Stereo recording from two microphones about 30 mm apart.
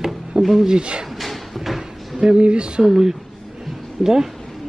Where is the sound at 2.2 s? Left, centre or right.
Right.